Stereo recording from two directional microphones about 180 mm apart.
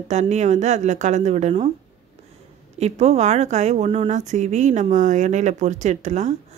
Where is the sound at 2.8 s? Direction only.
35° right (ahead or behind).